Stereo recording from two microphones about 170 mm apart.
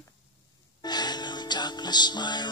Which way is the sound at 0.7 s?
25° left (ahead or behind).